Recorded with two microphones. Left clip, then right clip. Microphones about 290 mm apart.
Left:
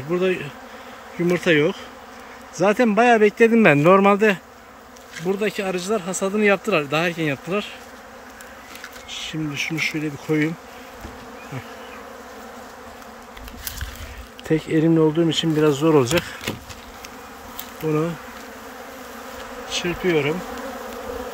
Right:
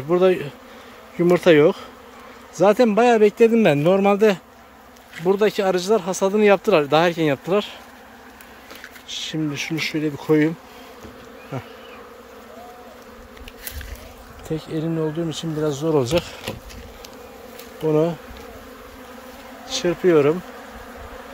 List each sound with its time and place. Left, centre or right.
0.1 s a man's voice: centre
9.3 s speech: centre
14.5 s speech: centre
19.7 s speech: centre